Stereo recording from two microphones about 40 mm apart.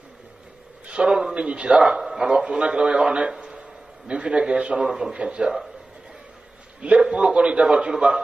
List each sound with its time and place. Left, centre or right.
0.8 s a man's voice: right
1.8 s speech: centre
2.4 s a man's voice: right
7.0 s a man's voice: right